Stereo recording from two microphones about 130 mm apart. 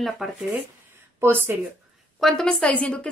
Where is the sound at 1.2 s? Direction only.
15° right (ahead or behind).